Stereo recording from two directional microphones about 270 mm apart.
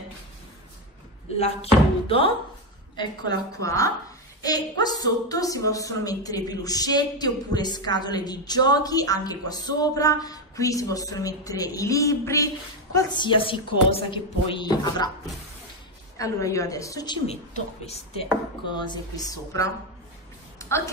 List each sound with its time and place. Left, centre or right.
1.4 s speech: left
3.6 s a woman's voice: centre
16.2 s a woman's voice: centre
20.5 s a sound: centre